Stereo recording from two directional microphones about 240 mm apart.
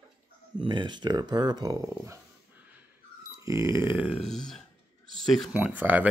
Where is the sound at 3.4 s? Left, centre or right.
Centre.